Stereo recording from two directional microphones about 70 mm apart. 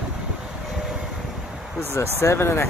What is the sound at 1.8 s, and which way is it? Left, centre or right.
Speech, left.